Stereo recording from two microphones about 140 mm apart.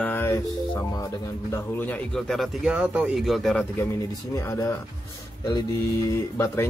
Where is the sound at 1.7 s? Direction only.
10° left (ahead or behind).